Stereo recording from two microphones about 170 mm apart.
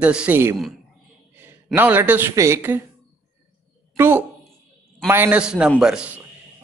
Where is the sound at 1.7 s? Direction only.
10° right (ahead or behind).